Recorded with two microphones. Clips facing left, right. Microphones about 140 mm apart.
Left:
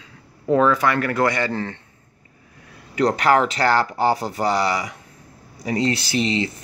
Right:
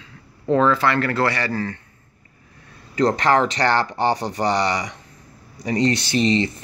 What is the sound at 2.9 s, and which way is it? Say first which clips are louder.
Speech: even; 10° left (ahead or behind).